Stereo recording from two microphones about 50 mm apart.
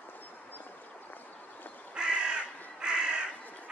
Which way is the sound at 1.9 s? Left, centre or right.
Centre.